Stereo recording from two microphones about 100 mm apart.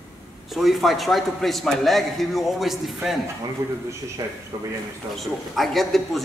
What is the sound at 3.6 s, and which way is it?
Speech, 30° right (ahead or behind).